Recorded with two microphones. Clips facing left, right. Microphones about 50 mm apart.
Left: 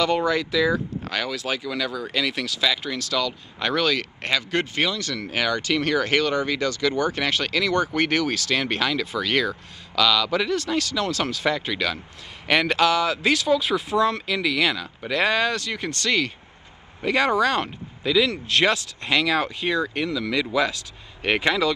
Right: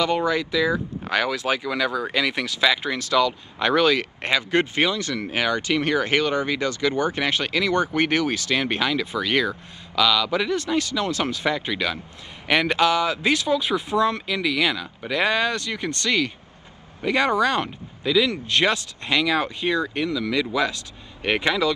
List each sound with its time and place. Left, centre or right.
0.0 s speech: centre
10.5 s speech: right
14.2 s speech: centre